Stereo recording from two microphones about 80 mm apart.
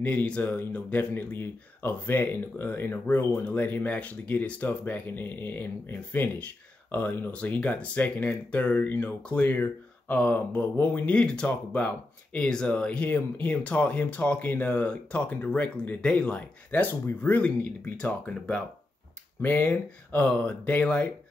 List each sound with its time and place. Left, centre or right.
0.0 s speech: centre
19.4 s speech: left